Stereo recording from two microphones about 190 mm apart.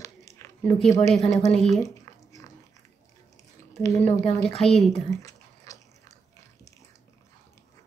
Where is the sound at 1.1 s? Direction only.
Centre (ahead or behind).